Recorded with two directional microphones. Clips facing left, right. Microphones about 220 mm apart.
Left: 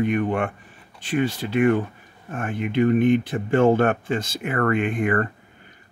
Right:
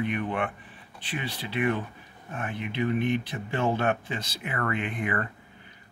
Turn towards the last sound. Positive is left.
turn(degrees=50)  # may be behind; listen again after turning